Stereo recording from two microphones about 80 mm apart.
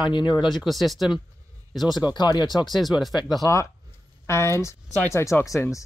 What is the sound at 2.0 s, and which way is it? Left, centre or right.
Speech, left.